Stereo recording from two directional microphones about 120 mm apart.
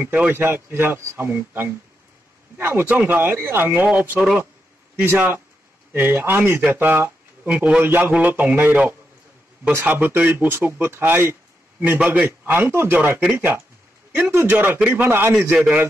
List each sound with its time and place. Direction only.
0.0 s speech: 15° right (ahead or behind)